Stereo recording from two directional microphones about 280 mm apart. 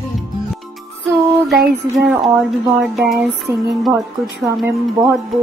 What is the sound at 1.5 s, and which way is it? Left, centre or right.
Music, right.